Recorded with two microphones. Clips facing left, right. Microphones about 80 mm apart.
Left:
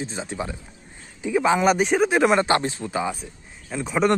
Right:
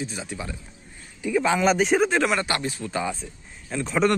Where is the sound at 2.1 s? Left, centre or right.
Left.